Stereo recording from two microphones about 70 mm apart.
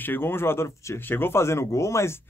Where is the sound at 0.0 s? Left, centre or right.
Left.